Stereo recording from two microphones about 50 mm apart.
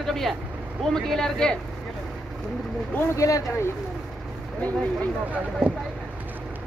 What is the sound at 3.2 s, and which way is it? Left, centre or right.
Speech, left.